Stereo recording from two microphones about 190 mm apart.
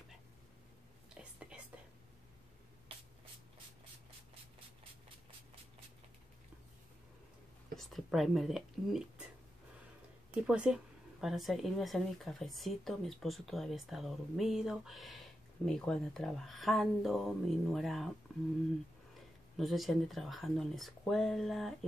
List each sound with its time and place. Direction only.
7.7 s speech: centre (ahead or behind)
10.4 s speech: 5° right (ahead or behind)
19.5 s speech: centre (ahead or behind)